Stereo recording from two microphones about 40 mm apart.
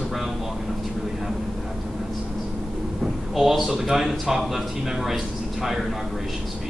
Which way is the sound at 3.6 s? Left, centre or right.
Centre.